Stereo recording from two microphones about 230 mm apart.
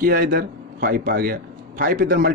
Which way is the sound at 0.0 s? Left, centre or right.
Right.